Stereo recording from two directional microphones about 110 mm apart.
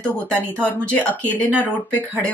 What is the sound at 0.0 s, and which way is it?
Speech, 10° left (ahead or behind).